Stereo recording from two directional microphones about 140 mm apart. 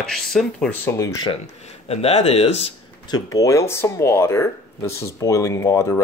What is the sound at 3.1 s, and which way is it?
Speech, 25° left (ahead or behind).